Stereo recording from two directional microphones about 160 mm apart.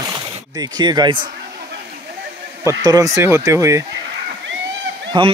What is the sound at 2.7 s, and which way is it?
Speech, 20° right (ahead or behind).